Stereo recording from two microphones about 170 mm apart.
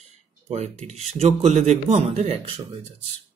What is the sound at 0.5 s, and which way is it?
A man's voice, 40° right (ahead or behind).